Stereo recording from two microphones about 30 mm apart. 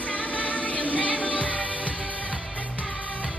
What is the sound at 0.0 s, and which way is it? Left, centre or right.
Music, left.